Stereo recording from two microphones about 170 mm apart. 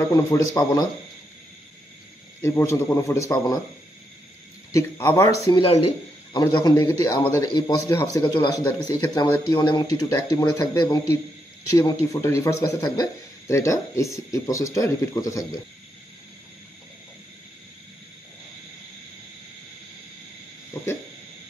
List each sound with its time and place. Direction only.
0.1 s a man's voice: 20° left (ahead or behind)
2.4 s speech: 15° left (ahead or behind)
4.7 s speech: 15° left (ahead or behind)
5.5 s a man's voice: 30° left (ahead or behind)